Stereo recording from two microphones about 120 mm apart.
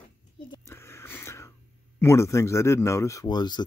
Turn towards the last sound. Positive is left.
turn(degrees=35)  # may be behind; listen again after turning